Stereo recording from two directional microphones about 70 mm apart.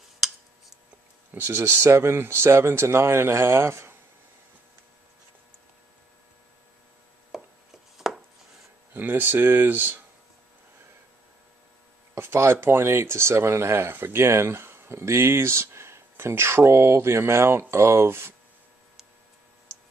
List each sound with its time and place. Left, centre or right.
0.2 s a sound: centre
1.3 s speech: right
7.3 s chopping: centre
8.9 s speech: right
12.2 s speech: right